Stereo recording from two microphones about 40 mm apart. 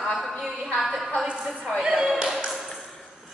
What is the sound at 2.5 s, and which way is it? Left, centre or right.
Ping, centre.